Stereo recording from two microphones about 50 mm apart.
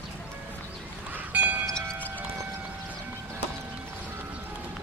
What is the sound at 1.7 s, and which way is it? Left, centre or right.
Music, centre.